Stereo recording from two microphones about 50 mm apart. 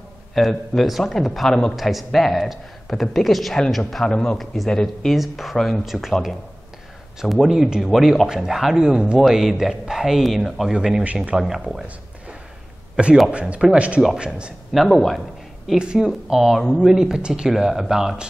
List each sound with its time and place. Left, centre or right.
0.3 s a man's voice: centre
4.0 s speech: centre
5.1 s a man's voice: centre
7.2 s a man's voice: centre
9.2 s a man's voice: centre
10.7 s speech: centre
12.9 s speech: centre
14.7 s a man's voice: centre
15.8 s speech: centre